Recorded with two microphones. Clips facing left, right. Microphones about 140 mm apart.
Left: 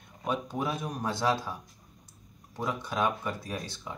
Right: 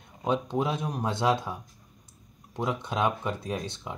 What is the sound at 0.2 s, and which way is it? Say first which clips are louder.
Speech: right 4 dB; 25° right (ahead or behind).